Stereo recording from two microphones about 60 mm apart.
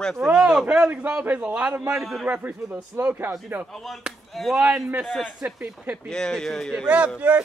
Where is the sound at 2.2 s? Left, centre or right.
Right.